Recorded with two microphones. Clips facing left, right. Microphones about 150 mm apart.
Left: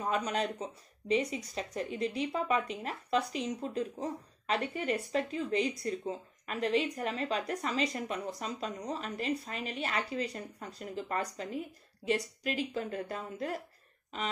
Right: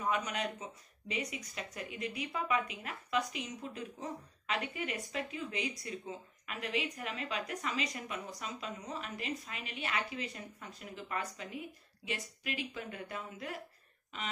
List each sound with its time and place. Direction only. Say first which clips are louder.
0.0 s speech: left 3 dB; 35° left (ahead or behind)